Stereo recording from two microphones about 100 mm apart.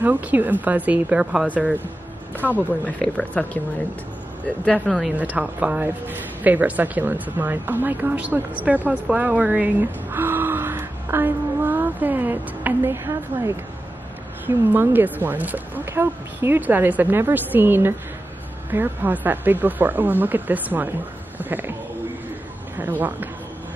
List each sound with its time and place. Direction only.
0.0 s speech: 15° right (ahead or behind)
2.4 s speech: 10° left (ahead or behind)
4.9 s a woman's voice: 10° right (ahead or behind)
22.8 s speech: 15° right (ahead or behind)